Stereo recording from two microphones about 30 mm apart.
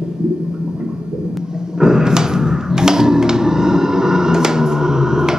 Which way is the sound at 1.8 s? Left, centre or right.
Centre.